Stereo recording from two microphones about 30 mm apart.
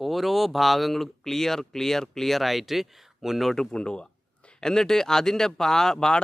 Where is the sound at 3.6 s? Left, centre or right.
Left.